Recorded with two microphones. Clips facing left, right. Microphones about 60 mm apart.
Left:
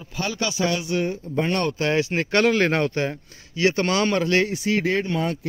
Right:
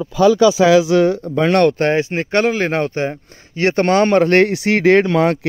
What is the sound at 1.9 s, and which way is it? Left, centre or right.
Speech, right.